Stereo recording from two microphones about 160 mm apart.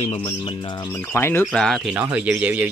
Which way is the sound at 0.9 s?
15° left (ahead or behind).